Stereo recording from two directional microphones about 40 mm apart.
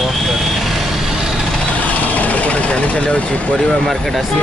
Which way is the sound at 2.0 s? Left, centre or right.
Left.